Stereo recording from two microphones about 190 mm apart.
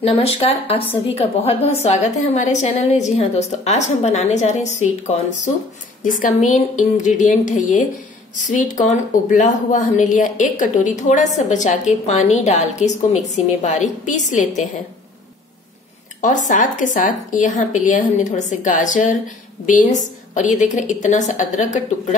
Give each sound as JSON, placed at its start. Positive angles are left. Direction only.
{"t": 0.0, "sound": "speech", "side_deg": 30}
{"t": 6.0, "sound": "speech", "side_deg": 45}
{"t": 16.2, "sound": "speech", "side_deg": 40}